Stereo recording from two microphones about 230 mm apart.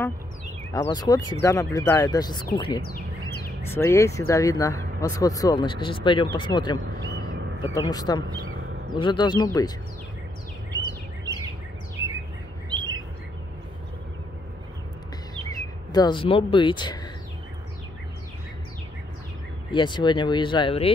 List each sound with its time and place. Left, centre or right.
0.7 s speech: centre
12.6 s bird vocalization: centre
15.9 s speech: centre
19.7 s speech: centre